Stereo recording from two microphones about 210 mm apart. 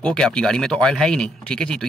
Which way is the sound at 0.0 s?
5° left (ahead or behind).